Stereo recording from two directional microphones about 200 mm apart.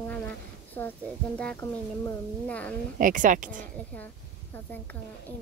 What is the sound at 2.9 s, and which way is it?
Speech, 40° right (ahead or behind).